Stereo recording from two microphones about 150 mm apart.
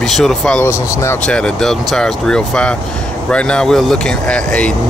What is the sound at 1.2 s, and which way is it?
Speech, 5° left (ahead or behind).